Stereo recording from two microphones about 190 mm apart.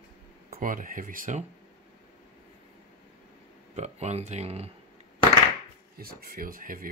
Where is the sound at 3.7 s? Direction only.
35° right (ahead or behind).